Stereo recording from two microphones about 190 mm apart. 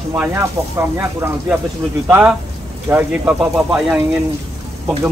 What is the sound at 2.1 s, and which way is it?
Speech, 10° right (ahead or behind).